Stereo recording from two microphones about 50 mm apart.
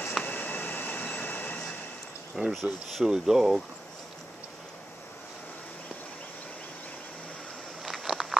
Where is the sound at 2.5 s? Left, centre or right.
Centre.